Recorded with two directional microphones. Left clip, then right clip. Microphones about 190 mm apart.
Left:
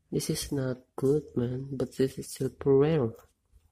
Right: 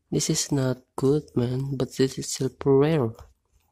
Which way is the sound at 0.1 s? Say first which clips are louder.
Right 6 dB; 15° right (ahead or behind).